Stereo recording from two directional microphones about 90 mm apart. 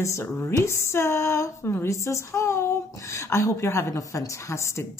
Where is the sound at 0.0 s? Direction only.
30° left (ahead or behind).